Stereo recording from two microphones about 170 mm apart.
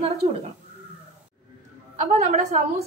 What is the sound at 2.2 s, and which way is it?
Speech, 40° right (ahead or behind).